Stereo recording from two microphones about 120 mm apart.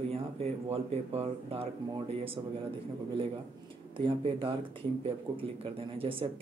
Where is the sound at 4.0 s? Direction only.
45° right (ahead or behind).